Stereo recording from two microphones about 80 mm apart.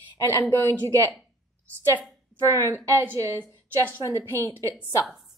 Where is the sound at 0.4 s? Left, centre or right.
Left.